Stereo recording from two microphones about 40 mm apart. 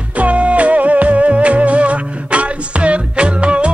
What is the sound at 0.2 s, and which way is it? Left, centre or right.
Music, right.